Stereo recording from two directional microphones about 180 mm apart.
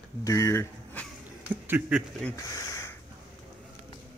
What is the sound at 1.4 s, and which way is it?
Speech, 10° right (ahead or behind).